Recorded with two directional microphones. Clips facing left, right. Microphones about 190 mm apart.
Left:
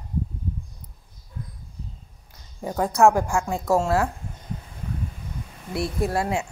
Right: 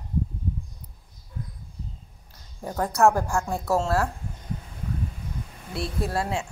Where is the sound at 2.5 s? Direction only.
10° left (ahead or behind).